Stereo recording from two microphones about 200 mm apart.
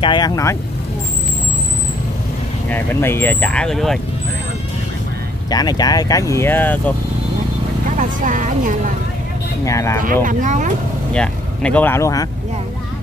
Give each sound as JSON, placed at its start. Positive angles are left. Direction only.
{"t": 0.0, "sound": "speech", "side_deg": 20}
{"t": 2.7, "sound": "speech", "side_deg": 10}
{"t": 5.5, "sound": "speech", "side_deg": 20}
{"t": 8.0, "sound": "speech", "side_deg": -40}
{"t": 9.7, "sound": "speech", "side_deg": 15}
{"t": 10.2, "sound": "speech", "side_deg": -40}
{"t": 11.1, "sound": "speech", "side_deg": 5}